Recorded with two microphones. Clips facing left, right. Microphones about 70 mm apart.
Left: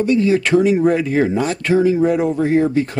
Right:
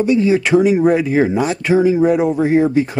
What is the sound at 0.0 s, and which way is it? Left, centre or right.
Speech, centre.